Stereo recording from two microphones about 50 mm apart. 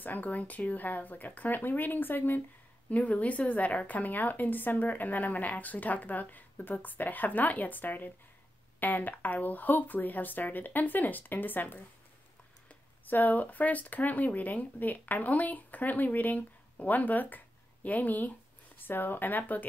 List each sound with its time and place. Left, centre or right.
0.0 s a woman's voice: left
2.9 s a woman's voice: left
13.0 s a woman's voice: left